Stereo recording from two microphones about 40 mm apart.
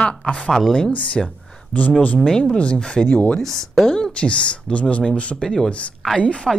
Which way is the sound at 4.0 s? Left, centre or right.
Left.